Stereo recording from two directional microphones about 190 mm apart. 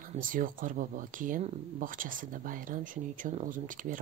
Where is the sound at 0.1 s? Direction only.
45° right (ahead or behind).